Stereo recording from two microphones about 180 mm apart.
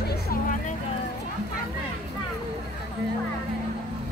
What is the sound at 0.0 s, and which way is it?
Music, 60° left (ahead or behind).